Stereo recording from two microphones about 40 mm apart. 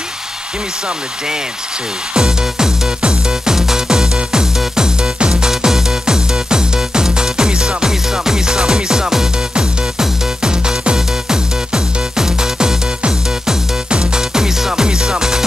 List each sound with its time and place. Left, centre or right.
2.1 s music: centre